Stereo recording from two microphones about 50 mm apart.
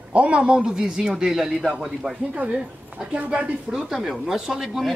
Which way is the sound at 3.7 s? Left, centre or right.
Centre.